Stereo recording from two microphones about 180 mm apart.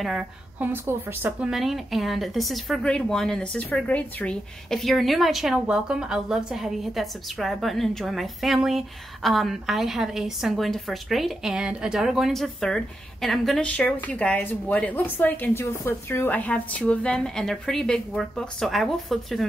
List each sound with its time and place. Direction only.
0.0 s a woman's voice: 5° right (ahead or behind)